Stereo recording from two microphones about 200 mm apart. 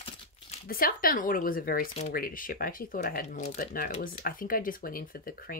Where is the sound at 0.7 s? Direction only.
45° left (ahead or behind).